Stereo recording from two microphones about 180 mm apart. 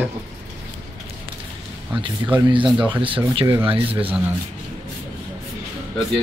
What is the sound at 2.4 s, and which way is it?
Speech, 25° right (ahead or behind).